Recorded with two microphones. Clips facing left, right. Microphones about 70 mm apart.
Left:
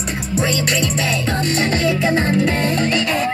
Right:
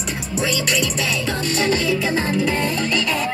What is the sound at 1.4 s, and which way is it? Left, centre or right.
Music, left.